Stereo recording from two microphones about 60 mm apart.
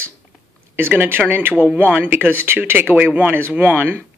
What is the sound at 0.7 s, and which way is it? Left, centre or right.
Speech, right.